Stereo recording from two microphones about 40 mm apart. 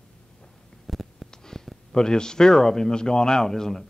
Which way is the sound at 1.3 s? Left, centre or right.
Centre.